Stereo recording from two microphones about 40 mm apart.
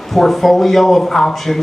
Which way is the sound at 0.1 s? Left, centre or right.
Centre.